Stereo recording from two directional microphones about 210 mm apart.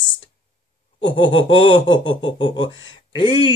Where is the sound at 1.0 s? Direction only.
25° left (ahead or behind).